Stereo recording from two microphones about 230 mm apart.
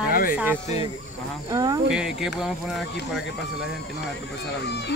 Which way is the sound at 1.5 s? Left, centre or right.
Centre.